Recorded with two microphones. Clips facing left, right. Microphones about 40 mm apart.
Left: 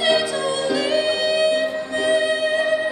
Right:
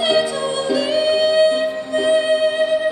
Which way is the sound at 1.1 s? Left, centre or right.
Right.